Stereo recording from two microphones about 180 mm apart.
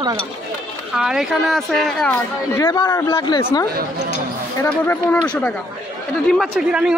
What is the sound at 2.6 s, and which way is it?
Speech, 20° left (ahead or behind).